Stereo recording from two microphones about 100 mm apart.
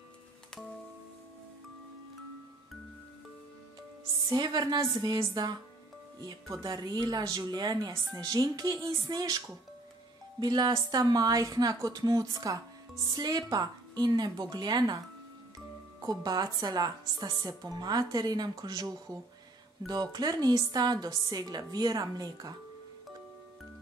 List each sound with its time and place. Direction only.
4.3 s a woman's voice: 45° right (ahead or behind)
6.6 s a woman's voice: 45° right (ahead or behind)
10.4 s a woman's voice: 50° right (ahead or behind)